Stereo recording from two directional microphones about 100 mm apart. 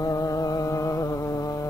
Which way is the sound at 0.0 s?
35° left (ahead or behind).